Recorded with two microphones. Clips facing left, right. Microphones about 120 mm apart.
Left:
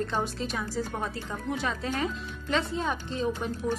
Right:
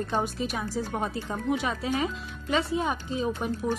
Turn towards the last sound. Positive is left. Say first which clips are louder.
# right 1 dB
turn(degrees=-15)  # may be behind; listen again after turning